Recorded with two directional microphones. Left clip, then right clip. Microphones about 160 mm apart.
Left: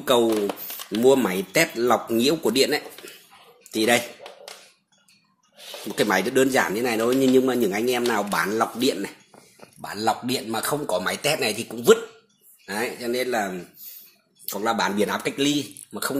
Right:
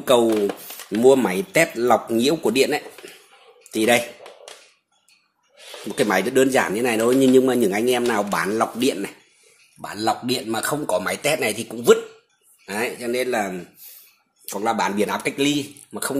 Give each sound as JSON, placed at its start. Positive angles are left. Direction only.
{"t": 0.0, "sound": "a man's voice", "side_deg": -10}
{"t": 5.9, "sound": "speech", "side_deg": -10}
{"t": 9.8, "sound": "a man's voice", "side_deg": 5}